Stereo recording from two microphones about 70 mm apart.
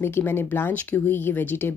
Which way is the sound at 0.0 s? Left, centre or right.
Left.